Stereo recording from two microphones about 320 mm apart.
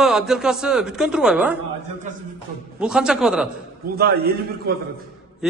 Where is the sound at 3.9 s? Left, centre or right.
Right.